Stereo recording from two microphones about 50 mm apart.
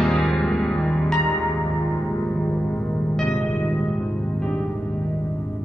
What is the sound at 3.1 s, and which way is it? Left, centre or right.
Music, centre.